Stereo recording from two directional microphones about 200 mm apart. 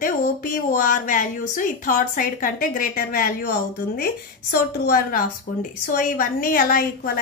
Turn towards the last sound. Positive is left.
turn(degrees=45)  # may be behind; listen again after turning